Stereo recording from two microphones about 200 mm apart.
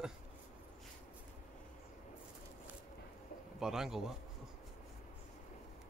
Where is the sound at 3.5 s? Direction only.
Centre (ahead or behind).